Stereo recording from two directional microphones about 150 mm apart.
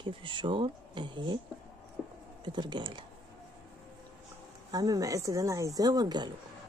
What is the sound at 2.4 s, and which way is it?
Speech, 30° right (ahead or behind).